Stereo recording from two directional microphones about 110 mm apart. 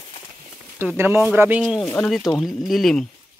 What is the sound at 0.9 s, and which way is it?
Speech, 20° right (ahead or behind).